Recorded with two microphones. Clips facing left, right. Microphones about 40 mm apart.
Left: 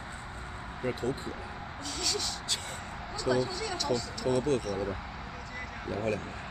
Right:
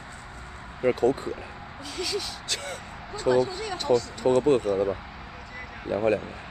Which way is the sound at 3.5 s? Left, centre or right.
Right.